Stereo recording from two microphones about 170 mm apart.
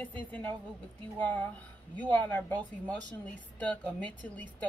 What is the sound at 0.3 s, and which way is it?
A woman's voice, 10° left (ahead or behind).